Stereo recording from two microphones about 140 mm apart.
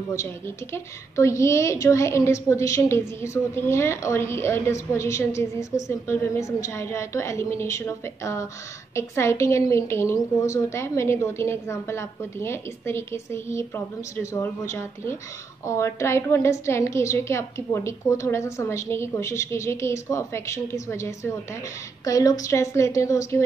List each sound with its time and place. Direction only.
0.7 s a woman's voice: 20° left (ahead or behind)